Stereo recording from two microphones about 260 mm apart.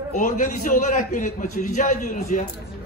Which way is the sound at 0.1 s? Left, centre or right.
Left.